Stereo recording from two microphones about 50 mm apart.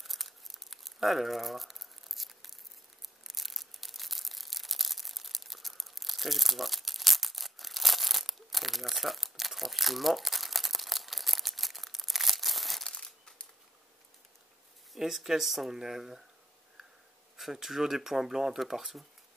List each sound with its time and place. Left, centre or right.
0.0 s crumpling: centre
3.3 s a sound: centre
12.8 s crumpling: centre
15.0 s speech: centre
17.4 s speech: centre